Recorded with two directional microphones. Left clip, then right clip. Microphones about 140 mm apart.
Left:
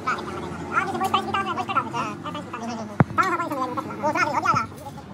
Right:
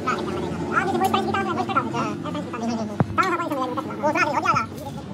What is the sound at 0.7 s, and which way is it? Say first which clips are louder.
Gargling: right 1 dB; 10° left (ahead or behind).